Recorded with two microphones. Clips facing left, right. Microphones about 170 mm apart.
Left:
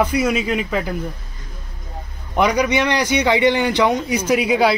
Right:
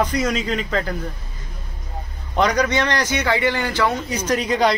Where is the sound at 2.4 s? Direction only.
10° left (ahead or behind).